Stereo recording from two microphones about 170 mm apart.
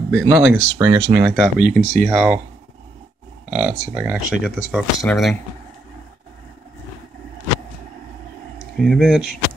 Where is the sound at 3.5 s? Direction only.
10° right (ahead or behind).